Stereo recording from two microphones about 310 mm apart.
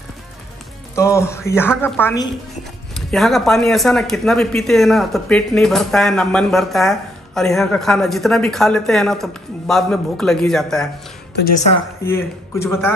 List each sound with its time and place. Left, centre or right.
0.9 s speech: centre
11.3 s a woman's voice: left
12.0 s speech: centre